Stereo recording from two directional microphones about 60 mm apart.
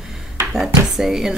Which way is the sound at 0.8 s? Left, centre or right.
Centre.